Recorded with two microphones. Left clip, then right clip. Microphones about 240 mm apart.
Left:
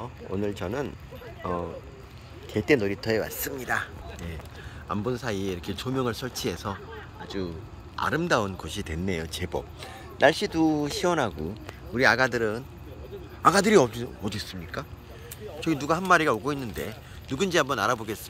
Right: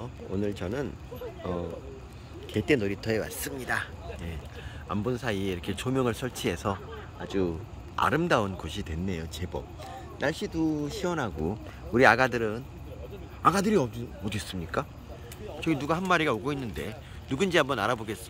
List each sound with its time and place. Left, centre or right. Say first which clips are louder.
0.0 s speech: left 2 dB; centre
14.3 s speech: right 3 dB; right
15.6 s speech: left 2 dB; centre